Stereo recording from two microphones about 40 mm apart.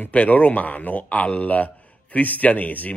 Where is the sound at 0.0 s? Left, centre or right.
Left.